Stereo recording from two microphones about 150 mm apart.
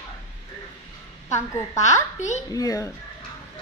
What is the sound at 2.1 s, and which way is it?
Speech, 50° left (ahead or behind).